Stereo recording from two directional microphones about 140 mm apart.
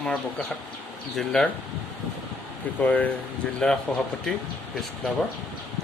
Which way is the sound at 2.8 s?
10° left (ahead or behind).